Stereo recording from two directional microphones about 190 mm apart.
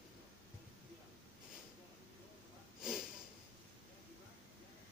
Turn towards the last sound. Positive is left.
turn(degrees=-5)  # may be behind; listen again after turning